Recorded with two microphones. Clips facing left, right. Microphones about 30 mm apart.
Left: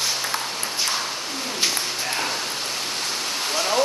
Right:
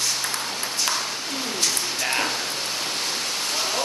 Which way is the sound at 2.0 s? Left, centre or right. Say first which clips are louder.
Right 4 dB; centre.